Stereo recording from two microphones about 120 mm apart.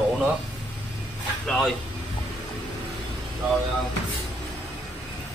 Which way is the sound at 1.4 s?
5° left (ahead or behind).